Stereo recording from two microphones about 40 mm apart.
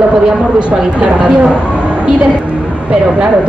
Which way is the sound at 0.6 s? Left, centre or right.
Right.